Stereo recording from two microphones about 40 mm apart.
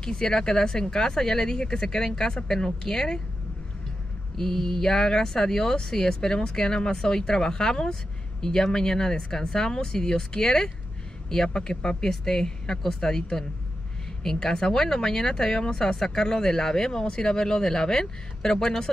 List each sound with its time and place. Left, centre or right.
0.0 s speech: centre
4.4 s speech: centre